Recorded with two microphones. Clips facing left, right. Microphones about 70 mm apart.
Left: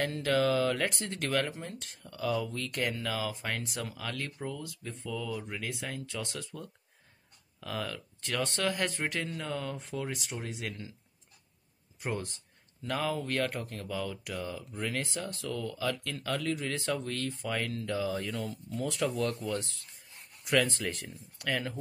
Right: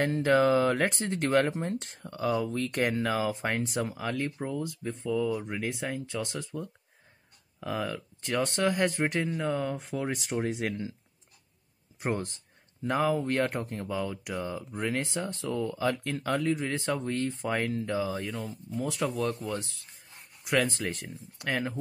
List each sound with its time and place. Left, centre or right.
0.0 s speech: right
12.0 s speech: right
12.8 s speech: right
20.8 s speech: right